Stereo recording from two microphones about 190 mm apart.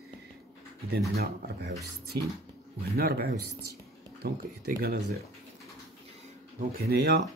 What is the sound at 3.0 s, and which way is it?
Speech, 55° right (ahead or behind).